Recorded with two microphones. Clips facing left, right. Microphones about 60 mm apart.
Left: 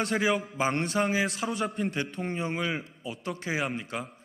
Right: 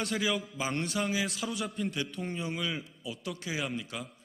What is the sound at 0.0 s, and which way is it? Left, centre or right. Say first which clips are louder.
A man's voice: left 5 dB; left.